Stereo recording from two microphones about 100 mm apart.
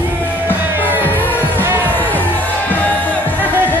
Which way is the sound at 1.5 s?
20° right (ahead or behind).